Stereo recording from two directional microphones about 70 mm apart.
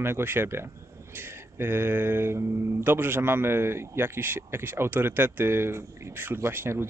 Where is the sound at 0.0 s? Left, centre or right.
Right.